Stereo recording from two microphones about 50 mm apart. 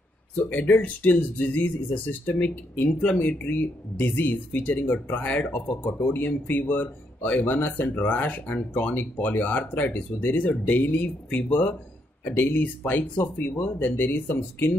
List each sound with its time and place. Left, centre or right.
0.5 s speech: left
2.9 s speech: left